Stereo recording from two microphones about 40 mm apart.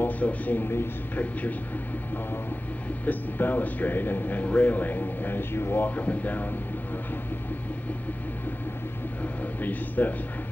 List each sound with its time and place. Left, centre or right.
0.0 s a man's voice: left
3.1 s speech: left
4.5 s speech: left
5.9 s speech: left
9.2 s speech: left